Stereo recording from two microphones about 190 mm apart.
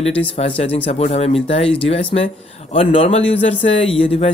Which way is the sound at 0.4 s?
35° left (ahead or behind).